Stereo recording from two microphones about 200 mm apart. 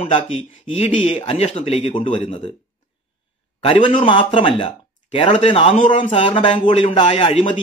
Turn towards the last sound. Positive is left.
turn(degrees=30)  # may be behind; listen again after turning